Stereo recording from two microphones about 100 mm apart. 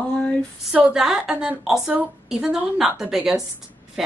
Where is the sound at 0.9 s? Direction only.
5° right (ahead or behind).